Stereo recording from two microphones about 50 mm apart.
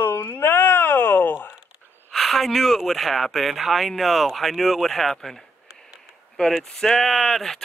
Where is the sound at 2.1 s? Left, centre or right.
Centre.